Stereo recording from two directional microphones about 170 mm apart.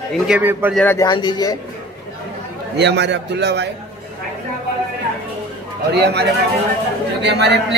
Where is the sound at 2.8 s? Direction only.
90° right.